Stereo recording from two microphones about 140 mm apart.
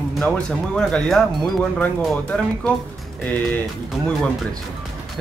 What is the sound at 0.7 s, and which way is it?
Speech, 5° left (ahead or behind).